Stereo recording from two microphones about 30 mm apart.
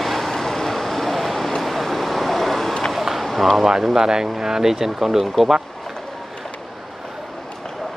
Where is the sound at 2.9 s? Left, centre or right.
Centre.